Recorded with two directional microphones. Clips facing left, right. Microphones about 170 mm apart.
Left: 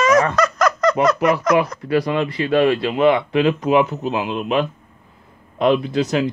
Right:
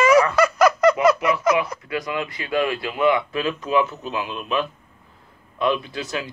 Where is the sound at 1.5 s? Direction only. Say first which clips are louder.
Left 6 dB; 55° left (ahead or behind).